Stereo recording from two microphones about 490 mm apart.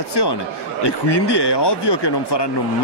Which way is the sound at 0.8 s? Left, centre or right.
Left.